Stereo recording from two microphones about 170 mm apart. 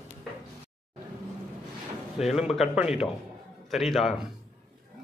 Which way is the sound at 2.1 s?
5° right (ahead or behind).